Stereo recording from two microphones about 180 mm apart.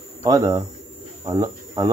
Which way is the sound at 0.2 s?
20° right (ahead or behind).